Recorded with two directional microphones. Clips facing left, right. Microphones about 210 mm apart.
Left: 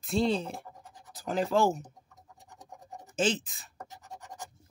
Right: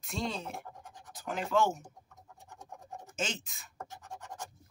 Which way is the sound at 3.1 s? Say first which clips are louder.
Left 9 dB; 35° left (ahead or behind).